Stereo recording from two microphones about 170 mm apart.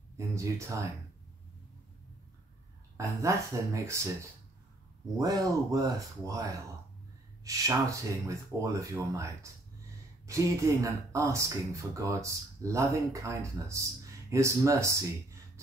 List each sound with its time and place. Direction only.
0.3 s speech: 20° right (ahead or behind)
3.0 s speech: 20° right (ahead or behind)